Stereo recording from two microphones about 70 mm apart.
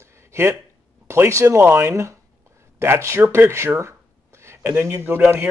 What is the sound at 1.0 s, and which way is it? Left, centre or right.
Speech, right.